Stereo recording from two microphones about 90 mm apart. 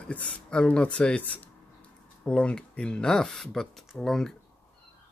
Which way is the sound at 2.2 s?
10° left (ahead or behind).